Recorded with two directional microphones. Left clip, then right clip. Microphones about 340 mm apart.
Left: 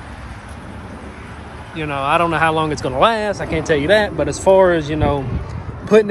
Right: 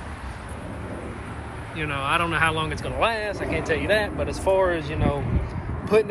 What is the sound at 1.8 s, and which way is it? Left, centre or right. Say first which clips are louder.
Speech: left 7 dB; centre.